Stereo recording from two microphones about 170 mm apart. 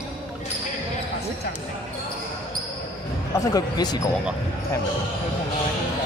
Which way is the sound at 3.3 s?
20° left (ahead or behind).